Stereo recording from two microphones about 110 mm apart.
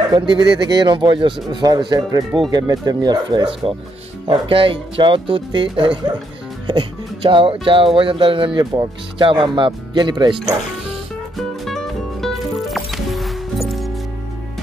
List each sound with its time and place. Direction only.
0.1 s speech: 35° right (ahead or behind)
11.3 s music: 5° left (ahead or behind)